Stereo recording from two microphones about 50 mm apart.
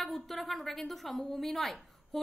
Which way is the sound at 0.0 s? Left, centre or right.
Centre.